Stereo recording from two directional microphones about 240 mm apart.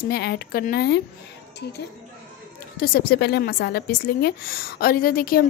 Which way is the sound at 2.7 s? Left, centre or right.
Left.